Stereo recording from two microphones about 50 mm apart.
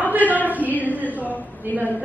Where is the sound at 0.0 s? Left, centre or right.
Right.